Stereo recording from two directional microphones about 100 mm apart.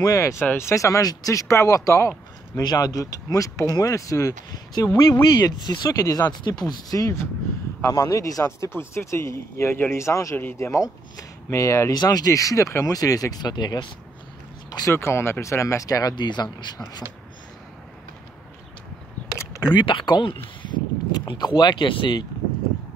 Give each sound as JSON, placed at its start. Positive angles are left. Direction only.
{"t": 0.0, "sound": "speech", "side_deg": 30}
{"t": 2.5, "sound": "speech", "side_deg": 40}
{"t": 5.2, "sound": "speech", "side_deg": 50}
{"t": 11.9, "sound": "speech", "side_deg": 40}
{"t": 15.0, "sound": "speech", "side_deg": 25}
{"t": 19.7, "sound": "speech", "side_deg": 55}